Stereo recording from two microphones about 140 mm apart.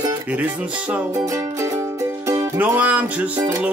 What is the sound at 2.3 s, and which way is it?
Music, 10° right (ahead or behind).